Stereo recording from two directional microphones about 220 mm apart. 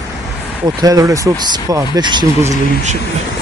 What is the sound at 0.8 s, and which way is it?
Speech, 15° right (ahead or behind).